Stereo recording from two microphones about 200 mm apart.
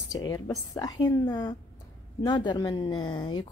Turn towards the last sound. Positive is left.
turn(degrees=25)  # may be behind; listen again after turning